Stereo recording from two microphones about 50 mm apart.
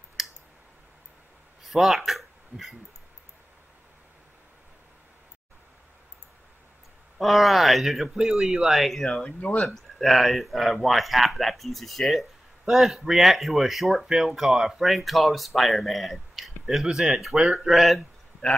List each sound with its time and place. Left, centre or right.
0.2 s clicking: centre
1.7 s speech: centre
7.2 s speech: centre
8.3 s speech: centre
8.6 s speech: centre
9.1 s speech: left
9.8 s speech: centre